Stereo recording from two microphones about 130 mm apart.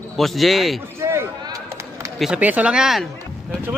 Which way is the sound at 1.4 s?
25° right (ahead or behind).